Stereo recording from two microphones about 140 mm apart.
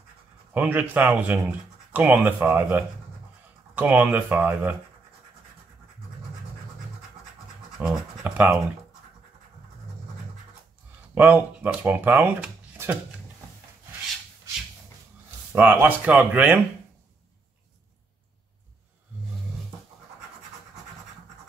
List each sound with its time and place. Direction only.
0.5 s speech: 10° right (ahead or behind)
7.8 s scratch: 5° right (ahead or behind)
11.1 s speech: 15° right (ahead or behind)
15.5 s speech: 15° right (ahead or behind)